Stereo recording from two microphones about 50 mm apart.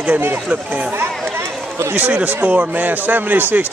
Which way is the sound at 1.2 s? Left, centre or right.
Right.